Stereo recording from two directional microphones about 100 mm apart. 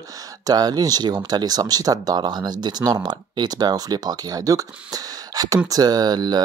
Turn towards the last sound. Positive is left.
turn(degrees=-45)  # may be behind; listen again after turning